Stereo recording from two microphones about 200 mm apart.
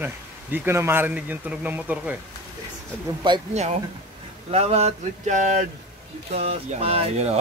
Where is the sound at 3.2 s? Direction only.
20° right (ahead or behind).